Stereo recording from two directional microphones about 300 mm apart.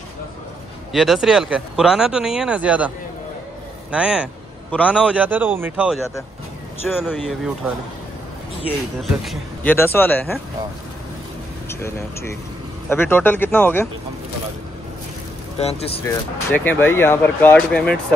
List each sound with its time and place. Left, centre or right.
0.9 s a man's voice: centre
3.9 s a man's voice: centre
9.2 s speech: centre
11.8 s speech: centre
15.5 s speech: centre
16.1 s speech: centre